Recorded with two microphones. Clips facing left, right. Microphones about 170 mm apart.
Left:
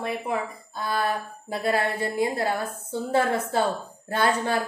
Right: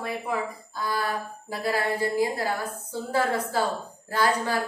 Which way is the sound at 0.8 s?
25° left (ahead or behind).